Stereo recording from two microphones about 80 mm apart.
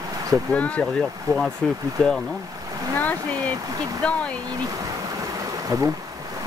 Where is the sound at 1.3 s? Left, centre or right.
Right.